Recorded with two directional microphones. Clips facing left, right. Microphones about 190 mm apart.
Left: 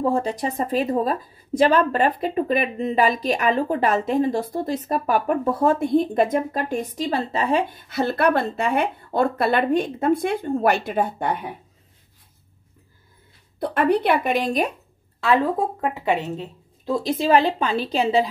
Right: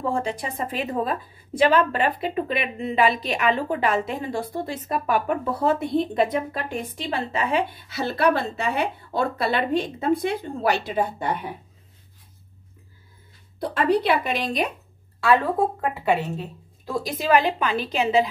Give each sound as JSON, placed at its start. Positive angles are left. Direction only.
{"t": 0.1, "sound": "a woman's voice", "side_deg": 40}
{"t": 13.7, "sound": "a woman's voice", "side_deg": 55}
{"t": 15.8, "sound": "a woman's voice", "side_deg": 20}